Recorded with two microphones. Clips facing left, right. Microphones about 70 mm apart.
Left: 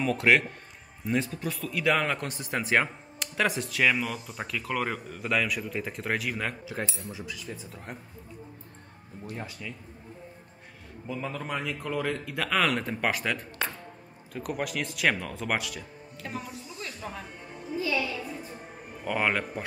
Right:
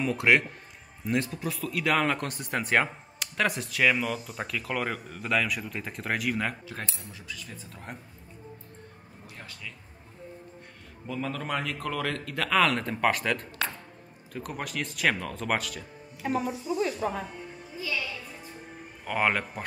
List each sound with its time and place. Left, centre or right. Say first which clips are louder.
0.0 s speech: even; centre
9.3 s speech: left 5 dB; centre
11.1 s speech: right 2 dB; centre
16.2 s a woman's voice: right 9 dB; centre
19.0 s speech: right 1 dB; centre